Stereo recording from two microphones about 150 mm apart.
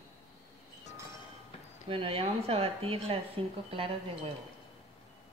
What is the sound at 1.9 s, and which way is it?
Speech, 40° right (ahead or behind).